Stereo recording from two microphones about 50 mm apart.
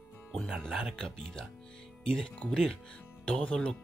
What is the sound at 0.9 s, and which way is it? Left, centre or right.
Speech, centre.